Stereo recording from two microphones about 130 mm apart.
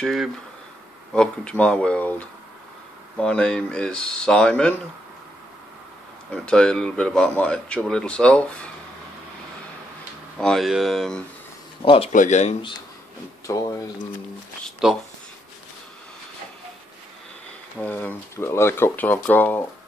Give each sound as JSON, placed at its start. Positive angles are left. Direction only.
{"t": 0.0, "sound": "speech", "side_deg": 0}
{"t": 6.3, "sound": "speech", "side_deg": 5}
{"t": 10.3, "sound": "speech", "side_deg": 5}
{"t": 11.8, "sound": "speech", "side_deg": 40}
{"t": 12.1, "sound": "speech", "side_deg": 75}
{"t": 13.5, "sound": "speech", "side_deg": 25}
{"t": 14.8, "sound": "speech", "side_deg": -5}
{"t": 17.7, "sound": "speech", "side_deg": 15}